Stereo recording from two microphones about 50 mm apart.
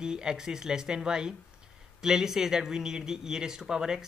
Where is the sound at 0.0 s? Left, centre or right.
Centre.